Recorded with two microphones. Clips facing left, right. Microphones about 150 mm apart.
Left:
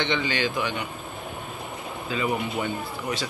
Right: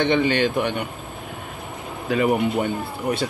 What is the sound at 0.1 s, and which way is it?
Speech, 55° right (ahead or behind).